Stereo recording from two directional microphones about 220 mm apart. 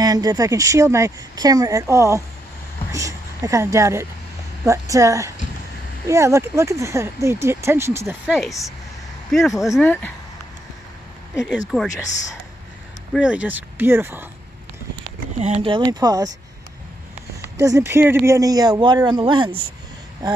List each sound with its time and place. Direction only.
0.0 s speech: 15° right (ahead or behind); by 10.1 s 10° left (ahead or behind)
11.7 s speech: 5° left (ahead or behind)
13.1 s speech: 5° right (ahead or behind)
15.3 s a man's voice: 30° right (ahead or behind)
17.6 s a man's voice: 15° right (ahead or behind)